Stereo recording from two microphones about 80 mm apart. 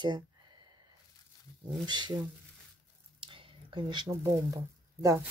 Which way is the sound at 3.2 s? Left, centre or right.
Right.